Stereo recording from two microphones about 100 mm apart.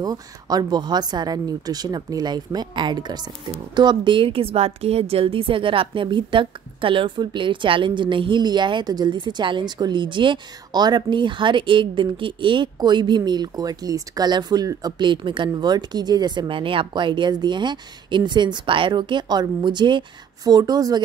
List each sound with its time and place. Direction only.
0.0 s a woman's voice: 40° right (ahead or behind)